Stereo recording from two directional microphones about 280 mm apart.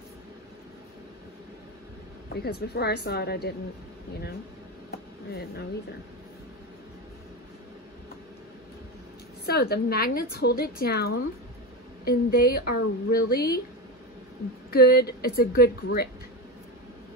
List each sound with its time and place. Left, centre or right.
2.3 s speech: left
9.5 s speech: left
14.7 s speech: left